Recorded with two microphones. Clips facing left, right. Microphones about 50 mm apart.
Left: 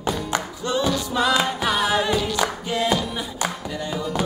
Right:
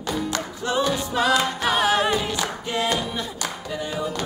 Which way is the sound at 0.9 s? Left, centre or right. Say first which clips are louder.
Left 1 dB; right.